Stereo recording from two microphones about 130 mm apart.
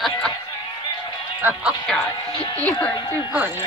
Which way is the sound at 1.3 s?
15° right (ahead or behind).